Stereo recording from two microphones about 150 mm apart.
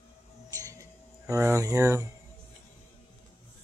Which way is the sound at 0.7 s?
20° right (ahead or behind).